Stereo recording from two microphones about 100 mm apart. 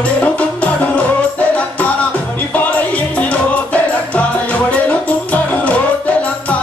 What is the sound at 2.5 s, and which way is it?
Music, 15° left (ahead or behind).